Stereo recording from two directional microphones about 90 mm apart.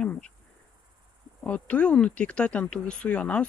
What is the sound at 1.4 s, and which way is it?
Speech, 15° left (ahead or behind).